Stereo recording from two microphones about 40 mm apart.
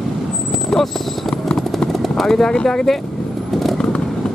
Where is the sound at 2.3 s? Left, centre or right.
Centre.